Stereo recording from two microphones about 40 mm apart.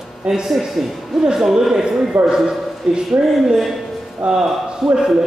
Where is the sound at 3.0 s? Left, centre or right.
Centre.